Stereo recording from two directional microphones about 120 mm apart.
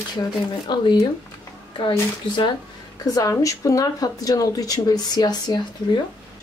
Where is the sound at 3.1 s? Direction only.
30° left (ahead or behind).